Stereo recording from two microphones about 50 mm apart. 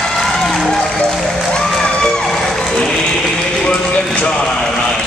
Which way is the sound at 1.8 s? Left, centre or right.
Centre.